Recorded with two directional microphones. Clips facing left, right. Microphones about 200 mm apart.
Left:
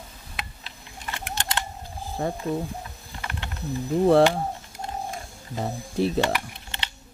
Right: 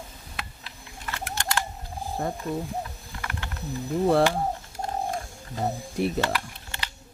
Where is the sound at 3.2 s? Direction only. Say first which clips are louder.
Left 1 dB; 25° left (ahead or behind).